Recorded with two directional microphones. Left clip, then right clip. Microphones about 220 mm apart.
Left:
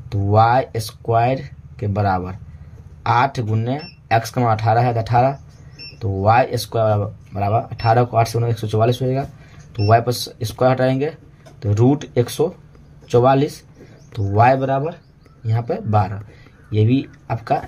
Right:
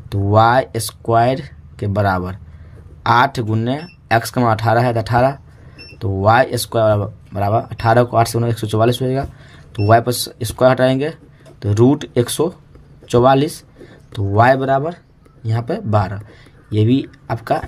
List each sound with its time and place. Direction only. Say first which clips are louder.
0.1 s speech: right 2 dB; 40° right (ahead or behind)